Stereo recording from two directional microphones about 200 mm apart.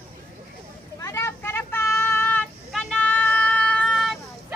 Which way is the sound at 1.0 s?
15° left (ahead or behind).